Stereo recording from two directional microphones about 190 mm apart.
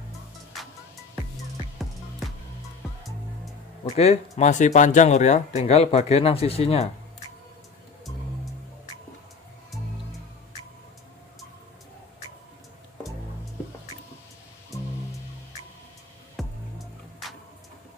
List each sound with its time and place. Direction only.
0.5 s music: centre (ahead or behind)
1.8 s music: centre (ahead or behind)
3.9 s speech: 35° left (ahead or behind)
16.3 s music: centre (ahead or behind)